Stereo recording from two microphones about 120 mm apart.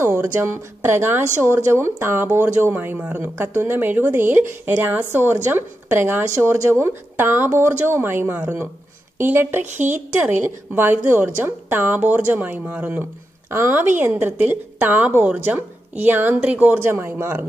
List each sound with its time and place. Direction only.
0.0 s a woman's voice: 20° right (ahead or behind)